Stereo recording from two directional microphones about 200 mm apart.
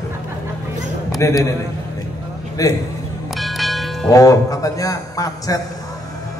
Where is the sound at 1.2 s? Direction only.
15° left (ahead or behind).